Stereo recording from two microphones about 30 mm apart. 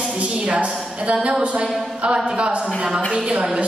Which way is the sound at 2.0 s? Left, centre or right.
Right.